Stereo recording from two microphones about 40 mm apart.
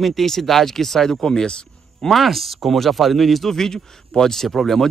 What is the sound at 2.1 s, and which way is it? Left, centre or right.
Speech, centre.